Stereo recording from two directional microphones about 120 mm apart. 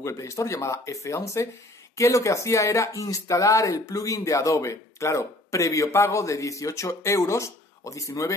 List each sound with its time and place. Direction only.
0.0 s speech: 25° left (ahead or behind)